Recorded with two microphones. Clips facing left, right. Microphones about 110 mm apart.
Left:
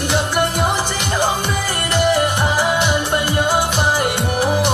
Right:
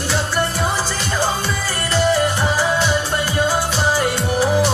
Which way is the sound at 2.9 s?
55° left (ahead or behind).